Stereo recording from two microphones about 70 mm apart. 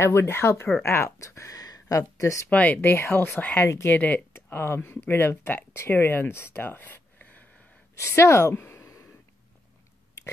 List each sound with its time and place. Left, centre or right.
0.0 s speech: left
1.6 s a sound: left
2.5 s speech: left
3.6 s speech: left
3.9 s speech: left
4.3 s speech: left
8.0 s speech: left